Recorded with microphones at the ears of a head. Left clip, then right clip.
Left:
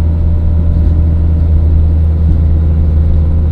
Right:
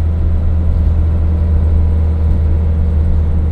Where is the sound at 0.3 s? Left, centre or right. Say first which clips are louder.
Left 3 dB; left.